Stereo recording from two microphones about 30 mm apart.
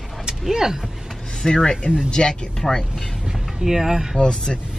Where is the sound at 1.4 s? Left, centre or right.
Centre.